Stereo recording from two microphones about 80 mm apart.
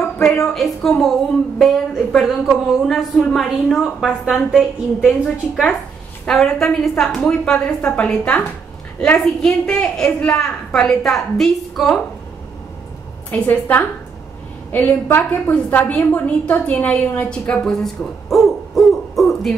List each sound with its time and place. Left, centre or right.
0.5 s a woman's voice: centre
13.3 s a woman's voice: left; by 19.5 s centre